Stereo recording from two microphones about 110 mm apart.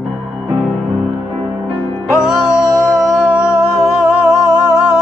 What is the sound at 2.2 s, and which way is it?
Music, 5° right (ahead or behind).